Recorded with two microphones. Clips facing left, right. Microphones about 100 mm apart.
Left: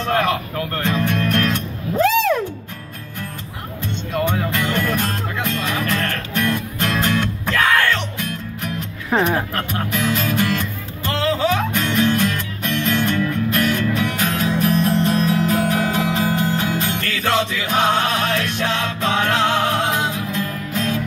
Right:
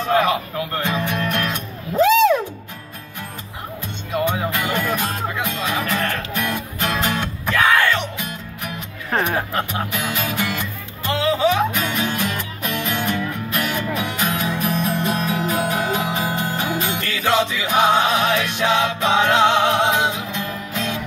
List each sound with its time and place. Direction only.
0.0 s speech: 10° right (ahead or behind)
4.3 s music: 10° right (ahead or behind)
9.1 s speech: 10° left (ahead or behind)
9.5 s music: 15° right (ahead or behind)